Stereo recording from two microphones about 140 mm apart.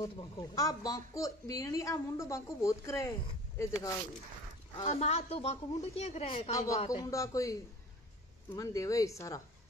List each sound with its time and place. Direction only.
0.0 s speech: 30° left (ahead or behind)
4.8 s a woman's voice: 50° left (ahead or behind)
7.0 s speech: 25° left (ahead or behind)